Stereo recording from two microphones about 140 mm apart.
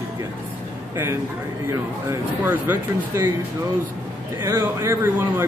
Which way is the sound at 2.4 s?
15° right (ahead or behind).